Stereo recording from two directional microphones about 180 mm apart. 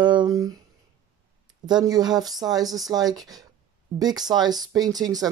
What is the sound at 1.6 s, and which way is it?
Speech, 20° right (ahead or behind).